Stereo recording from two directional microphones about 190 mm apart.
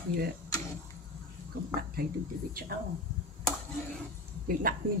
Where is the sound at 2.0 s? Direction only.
50° right (ahead or behind).